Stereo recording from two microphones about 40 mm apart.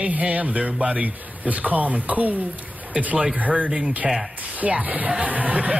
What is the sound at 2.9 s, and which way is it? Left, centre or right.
A man's voice, right.